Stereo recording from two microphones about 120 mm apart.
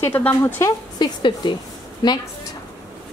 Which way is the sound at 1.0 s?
40° left (ahead or behind).